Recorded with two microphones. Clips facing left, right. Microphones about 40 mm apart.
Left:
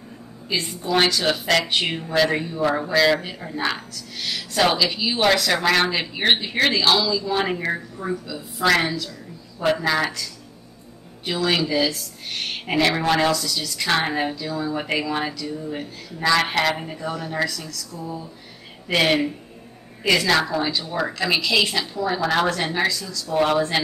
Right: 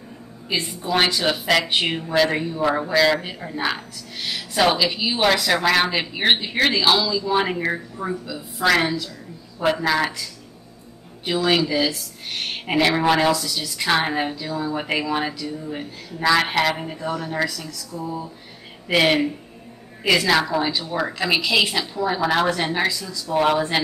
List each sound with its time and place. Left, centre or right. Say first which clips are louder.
0.5 s a woman's voice: even; centre
11.2 s a woman's voice: right 2 dB; centre
17.6 s a woman's voice: right 2 dB; centre
18.9 s a woman's voice: right 1 dB; centre